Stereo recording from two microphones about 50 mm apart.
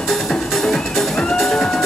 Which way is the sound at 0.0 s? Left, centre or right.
Centre.